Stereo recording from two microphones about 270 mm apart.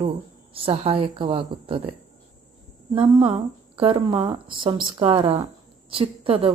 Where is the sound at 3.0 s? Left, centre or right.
Centre.